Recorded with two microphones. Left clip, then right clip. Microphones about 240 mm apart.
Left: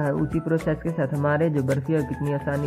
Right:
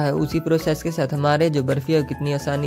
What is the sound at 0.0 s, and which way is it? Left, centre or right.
Speech, right.